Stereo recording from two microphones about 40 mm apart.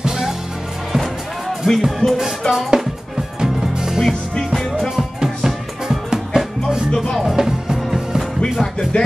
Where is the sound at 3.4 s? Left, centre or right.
Centre.